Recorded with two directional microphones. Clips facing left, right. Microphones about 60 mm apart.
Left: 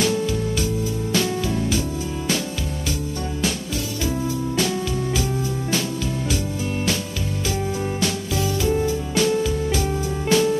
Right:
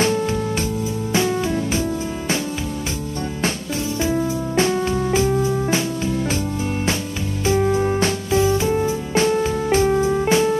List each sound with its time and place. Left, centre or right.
1.1 s music: right
4.0 s music: right
7.4 s music: right